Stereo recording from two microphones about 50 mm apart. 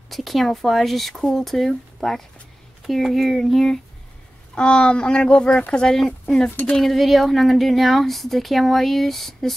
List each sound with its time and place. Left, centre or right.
0.1 s a woman's voice: centre
4.6 s a woman's voice: centre